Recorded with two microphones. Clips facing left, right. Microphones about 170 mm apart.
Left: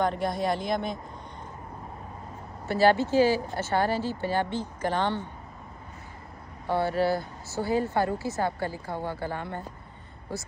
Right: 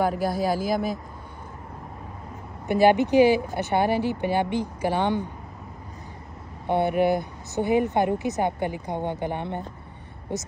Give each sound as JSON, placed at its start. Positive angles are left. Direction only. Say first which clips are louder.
{"t": 0.0, "sound": "speech", "louder": "right 3 dB", "side_deg": -5}
{"t": 2.6, "sound": "speech", "louder": "right 3 dB", "side_deg": -15}
{"t": 6.7, "sound": "speech", "louder": "right 4 dB", "side_deg": -20}